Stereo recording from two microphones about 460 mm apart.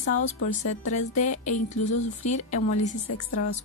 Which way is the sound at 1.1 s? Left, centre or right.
Left.